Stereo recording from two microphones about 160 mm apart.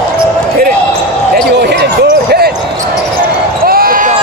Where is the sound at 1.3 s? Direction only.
90° right.